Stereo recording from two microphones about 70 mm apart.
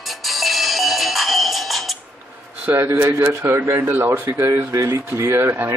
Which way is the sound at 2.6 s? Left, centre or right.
Right.